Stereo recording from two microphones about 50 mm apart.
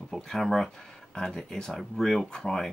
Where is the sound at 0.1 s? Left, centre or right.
Centre.